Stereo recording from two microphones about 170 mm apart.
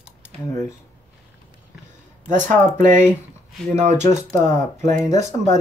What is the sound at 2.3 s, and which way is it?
Speech, 45° right (ahead or behind).